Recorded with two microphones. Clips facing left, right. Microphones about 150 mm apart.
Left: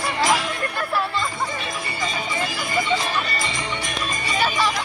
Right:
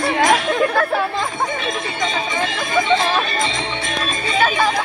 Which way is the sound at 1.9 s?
90° right.